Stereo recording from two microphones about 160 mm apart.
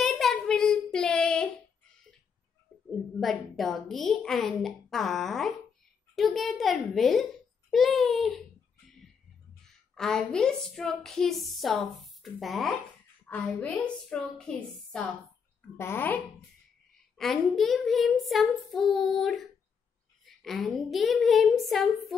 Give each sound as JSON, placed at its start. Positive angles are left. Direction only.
{"t": 0.0, "sound": "child singing", "side_deg": 0}
{"t": 2.7, "sound": "a sound", "side_deg": 10}
{"t": 3.2, "sound": "a woman's voice", "side_deg": 0}
{"t": 9.9, "sound": "a woman's voice", "side_deg": 5}
{"t": 17.2, "sound": "a woman's voice", "side_deg": 0}